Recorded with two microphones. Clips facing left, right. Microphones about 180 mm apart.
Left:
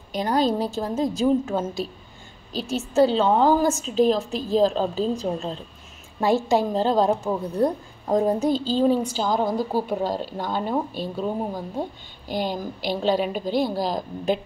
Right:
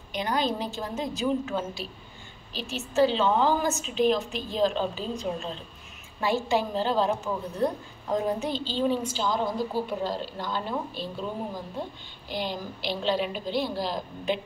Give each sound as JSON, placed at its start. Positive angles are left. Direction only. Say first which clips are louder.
{"t": 0.1, "sound": "a woman's voice", "louder": "left 6 dB", "side_deg": 40}
{"t": 12.3, "sound": "a woman's voice", "louder": "left 5 dB", "side_deg": 45}